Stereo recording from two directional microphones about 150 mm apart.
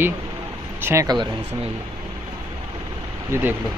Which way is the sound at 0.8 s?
20° right (ahead or behind).